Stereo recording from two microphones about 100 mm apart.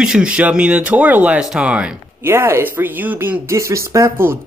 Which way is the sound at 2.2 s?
25° right (ahead or behind).